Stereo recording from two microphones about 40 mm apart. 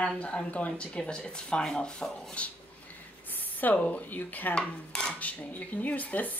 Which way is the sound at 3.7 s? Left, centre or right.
Left.